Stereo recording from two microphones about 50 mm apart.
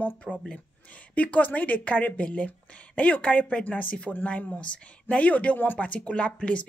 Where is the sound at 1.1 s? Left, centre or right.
Left.